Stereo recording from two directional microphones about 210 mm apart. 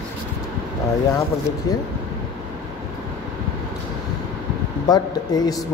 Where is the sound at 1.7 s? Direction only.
15° left (ahead or behind).